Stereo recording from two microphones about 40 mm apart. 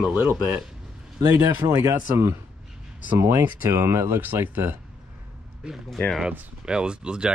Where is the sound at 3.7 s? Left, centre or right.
Right.